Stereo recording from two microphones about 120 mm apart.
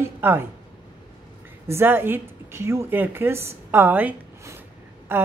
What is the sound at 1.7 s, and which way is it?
Speech, 20° right (ahead or behind).